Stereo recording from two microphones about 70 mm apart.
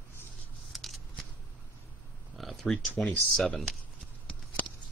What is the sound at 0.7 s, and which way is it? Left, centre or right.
Scissors, centre.